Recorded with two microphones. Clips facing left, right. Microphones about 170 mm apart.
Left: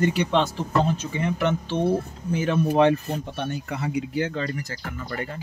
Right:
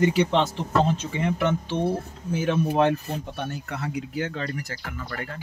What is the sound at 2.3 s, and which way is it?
Speech, 5° right (ahead or behind).